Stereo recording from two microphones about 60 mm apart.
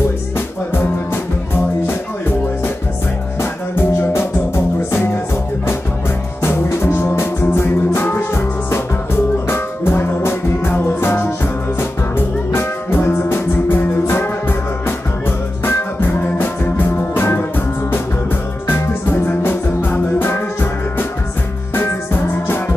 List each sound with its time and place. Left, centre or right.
3.3 s music: left
6.4 s music: left
19.0 s music: left
21.7 s music: left